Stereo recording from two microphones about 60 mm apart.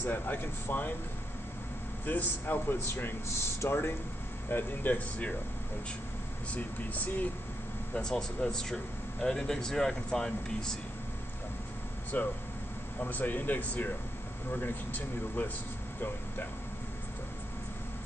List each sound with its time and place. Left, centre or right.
0.1 s speech: left
2.0 s speech: left
4.5 s speech: left
6.5 s speech: left
7.9 s speech: centre
12.1 s speech: left